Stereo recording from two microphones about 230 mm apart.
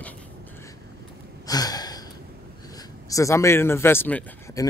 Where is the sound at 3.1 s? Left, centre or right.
Centre.